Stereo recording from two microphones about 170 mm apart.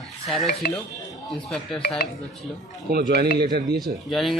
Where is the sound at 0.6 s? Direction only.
65° left (ahead or behind).